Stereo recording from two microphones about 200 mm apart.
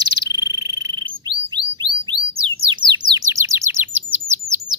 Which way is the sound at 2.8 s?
20° right (ahead or behind).